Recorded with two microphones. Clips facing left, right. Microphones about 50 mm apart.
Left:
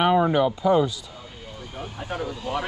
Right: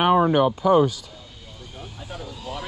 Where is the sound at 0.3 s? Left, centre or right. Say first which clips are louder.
Right 2 dB; right.